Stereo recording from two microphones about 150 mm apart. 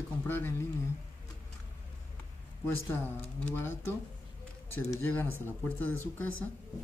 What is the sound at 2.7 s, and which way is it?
Speech, 15° left (ahead or behind).